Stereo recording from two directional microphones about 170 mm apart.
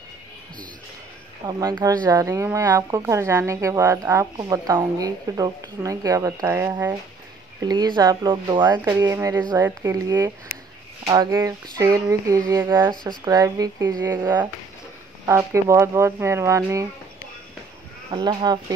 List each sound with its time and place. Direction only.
1.5 s a woman's voice: 25° right (ahead or behind)
7.6 s a woman's voice: 25° right (ahead or behind)
18.1 s a woman's voice: 25° right (ahead or behind)